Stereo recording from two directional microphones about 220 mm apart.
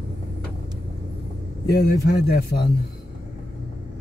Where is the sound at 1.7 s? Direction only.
45° left (ahead or behind).